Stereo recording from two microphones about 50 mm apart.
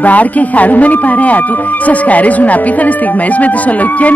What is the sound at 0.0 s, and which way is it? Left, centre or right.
Speech, left.